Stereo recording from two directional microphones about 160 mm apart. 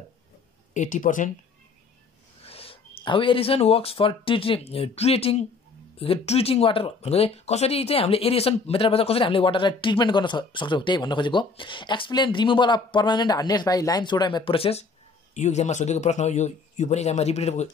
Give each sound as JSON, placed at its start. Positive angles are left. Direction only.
{"t": 0.7, "sound": "a man's voice", "side_deg": 55}
{"t": 2.4, "sound": "a man's voice", "side_deg": 35}